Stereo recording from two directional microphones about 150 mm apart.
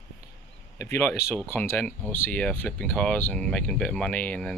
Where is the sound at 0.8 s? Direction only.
15° left (ahead or behind).